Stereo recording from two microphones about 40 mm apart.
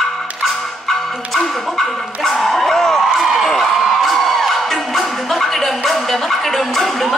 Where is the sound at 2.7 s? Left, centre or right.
Centre.